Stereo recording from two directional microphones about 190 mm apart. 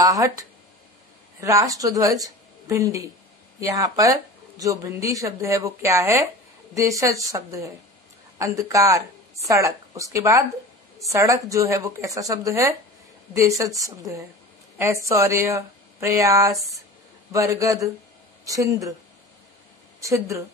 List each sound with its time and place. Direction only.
0.0 s a woman's voice: 15° right (ahead or behind)
20.0 s speech: 15° right (ahead or behind)